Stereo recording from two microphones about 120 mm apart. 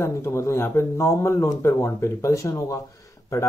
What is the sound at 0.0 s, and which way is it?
Speech, 20° left (ahead or behind).